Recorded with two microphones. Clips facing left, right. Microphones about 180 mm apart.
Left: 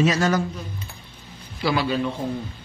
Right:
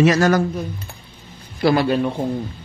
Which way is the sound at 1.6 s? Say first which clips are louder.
Right 6 dB; 55° right (ahead or behind).